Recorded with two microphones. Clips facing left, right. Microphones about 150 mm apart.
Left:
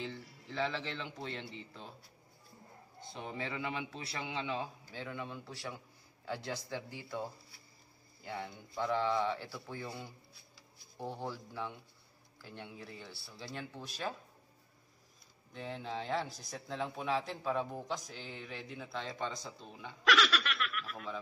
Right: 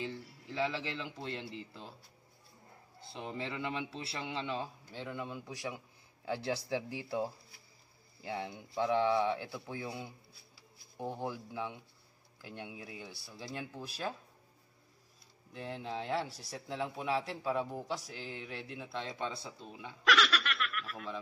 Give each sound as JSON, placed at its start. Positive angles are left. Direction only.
{"t": 0.0, "sound": "speech", "side_deg": -5}
{"t": 3.1, "sound": "speech", "side_deg": 0}
{"t": 5.5, "sound": "speech", "side_deg": -15}
{"t": 8.3, "sound": "speech", "side_deg": -20}
{"t": 15.5, "sound": "speech", "side_deg": -5}